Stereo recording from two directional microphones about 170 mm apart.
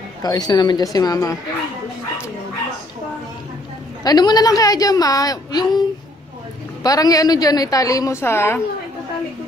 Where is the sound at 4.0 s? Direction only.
25° left (ahead or behind).